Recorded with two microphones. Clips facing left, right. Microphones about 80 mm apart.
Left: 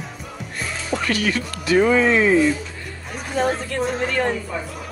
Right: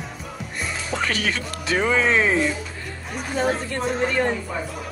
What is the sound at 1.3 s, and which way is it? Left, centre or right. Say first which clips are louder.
Speech: left 6 dB; left.